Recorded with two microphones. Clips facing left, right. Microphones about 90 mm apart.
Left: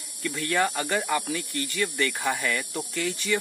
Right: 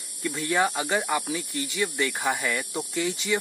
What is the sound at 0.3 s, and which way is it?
Speech, 15° right (ahead or behind).